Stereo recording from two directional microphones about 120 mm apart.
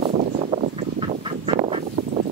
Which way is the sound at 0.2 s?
80° right.